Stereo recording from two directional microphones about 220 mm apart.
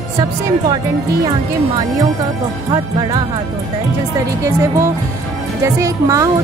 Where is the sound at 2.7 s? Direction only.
20° right (ahead or behind).